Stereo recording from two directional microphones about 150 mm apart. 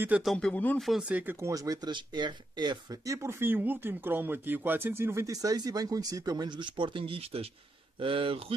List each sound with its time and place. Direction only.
0.2 s a man's voice: 5° left (ahead or behind)
0.8 s speech: 5° right (ahead or behind); by 8.5 s 40° right (ahead or behind)